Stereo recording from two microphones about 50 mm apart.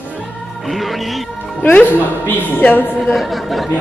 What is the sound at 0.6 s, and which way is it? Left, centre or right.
Music, centre.